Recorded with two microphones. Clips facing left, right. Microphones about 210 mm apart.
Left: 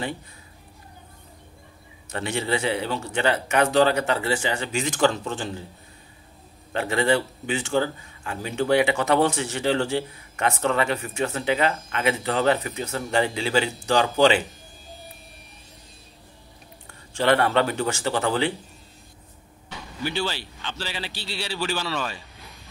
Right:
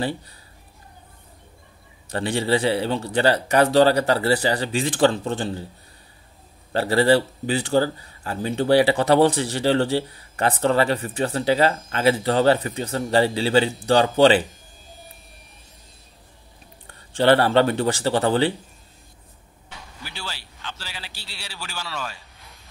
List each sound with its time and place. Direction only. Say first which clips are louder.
2.0 s speech: right 4 dB; 35° right (ahead or behind)
6.7 s speech: right 4 dB; 35° right (ahead or behind)
16.8 s speech: right 4 dB; 30° right (ahead or behind)
20.0 s a man's voice: left 11 dB; 5° right (ahead or behind)